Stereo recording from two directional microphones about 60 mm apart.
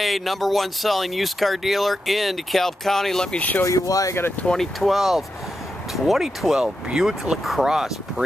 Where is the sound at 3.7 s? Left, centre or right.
Left.